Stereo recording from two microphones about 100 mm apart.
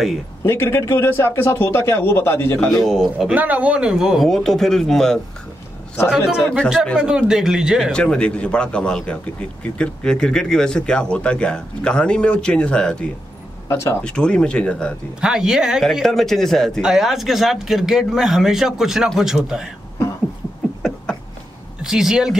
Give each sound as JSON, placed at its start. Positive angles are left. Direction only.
{"t": 0.4, "sound": "a man's voice", "side_deg": 25}
{"t": 2.8, "sound": "speech", "side_deg": 0}
{"t": 3.3, "sound": "speech", "side_deg": -15}
{"t": 6.0, "sound": "a man's voice", "side_deg": -5}
{"t": 7.9, "sound": "a man's voice", "side_deg": 10}
{"t": 13.7, "sound": "speech", "side_deg": 25}
{"t": 14.0, "sound": "a man's voice", "side_deg": 10}
{"t": 15.1, "sound": "speech", "side_deg": -5}
{"t": 20.8, "sound": "a sound", "side_deg": 5}
{"t": 21.8, "sound": "speech", "side_deg": -5}